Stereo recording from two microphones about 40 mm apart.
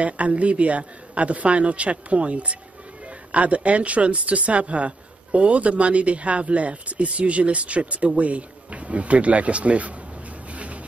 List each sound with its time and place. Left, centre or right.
0.0 s speech: right
10.5 s rub: right